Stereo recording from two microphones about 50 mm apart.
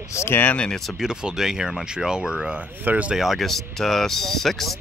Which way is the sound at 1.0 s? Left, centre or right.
Centre.